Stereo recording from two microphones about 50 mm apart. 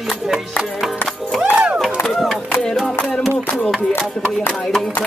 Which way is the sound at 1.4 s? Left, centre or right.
Right.